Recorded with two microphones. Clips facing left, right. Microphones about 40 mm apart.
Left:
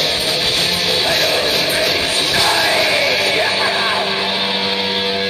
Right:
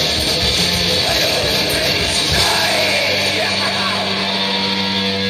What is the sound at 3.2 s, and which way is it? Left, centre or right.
Vehicle, left.